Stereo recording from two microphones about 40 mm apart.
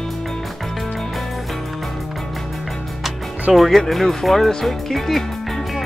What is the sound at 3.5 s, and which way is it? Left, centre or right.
Speech, centre.